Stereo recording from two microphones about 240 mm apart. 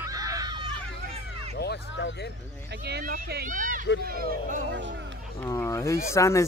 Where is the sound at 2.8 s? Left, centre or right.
Right.